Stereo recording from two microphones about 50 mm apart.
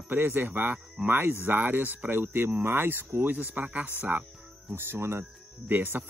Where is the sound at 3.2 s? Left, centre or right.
Right.